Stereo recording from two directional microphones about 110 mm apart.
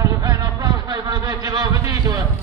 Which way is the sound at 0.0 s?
30° right (ahead or behind).